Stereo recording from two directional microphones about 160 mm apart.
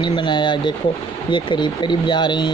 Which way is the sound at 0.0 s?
30° left (ahead or behind).